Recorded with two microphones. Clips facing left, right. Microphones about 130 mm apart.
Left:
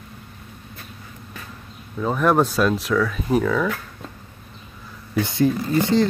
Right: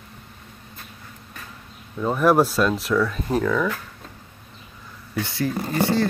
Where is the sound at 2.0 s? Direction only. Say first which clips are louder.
Right 1 dB; 5° right (ahead or behind).